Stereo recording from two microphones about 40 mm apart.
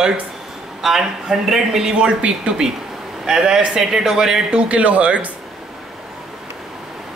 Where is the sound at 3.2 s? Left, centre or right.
Centre.